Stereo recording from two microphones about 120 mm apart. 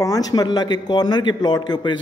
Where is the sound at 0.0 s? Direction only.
30° left (ahead or behind).